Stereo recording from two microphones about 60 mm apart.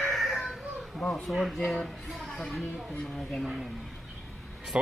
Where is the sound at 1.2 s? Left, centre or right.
Centre.